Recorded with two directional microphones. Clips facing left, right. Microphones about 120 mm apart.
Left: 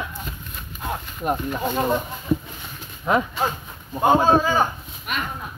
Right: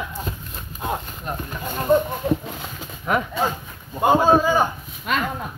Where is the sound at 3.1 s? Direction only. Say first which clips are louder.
Left 2 dB; 25° left (ahead or behind).